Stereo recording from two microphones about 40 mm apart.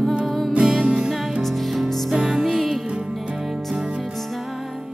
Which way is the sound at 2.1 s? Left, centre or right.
Centre.